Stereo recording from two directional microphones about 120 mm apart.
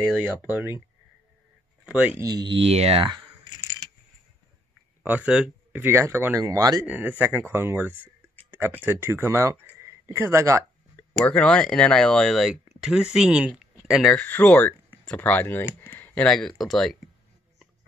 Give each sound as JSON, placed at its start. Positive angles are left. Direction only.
{"t": 0.2, "sound": "speech", "side_deg": -15}
{"t": 1.9, "sound": "speech", "side_deg": -10}
{"t": 2.1, "sound": "speech", "side_deg": -35}
{"t": 5.0, "sound": "speech", "side_deg": -10}
{"t": 5.8, "sound": "speech", "side_deg": -20}
{"t": 6.8, "sound": "speech", "side_deg": -10}
{"t": 11.0, "sound": "speech", "side_deg": 10}
{"t": 14.1, "sound": "speech", "side_deg": 15}
{"t": 15.8, "sound": "a sound", "side_deg": 15}
{"t": 16.3, "sound": "speech", "side_deg": 5}